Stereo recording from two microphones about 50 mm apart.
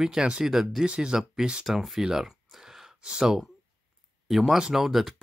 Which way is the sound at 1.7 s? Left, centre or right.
Centre.